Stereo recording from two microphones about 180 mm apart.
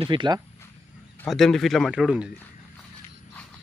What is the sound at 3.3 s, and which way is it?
Walk, 5° left (ahead or behind).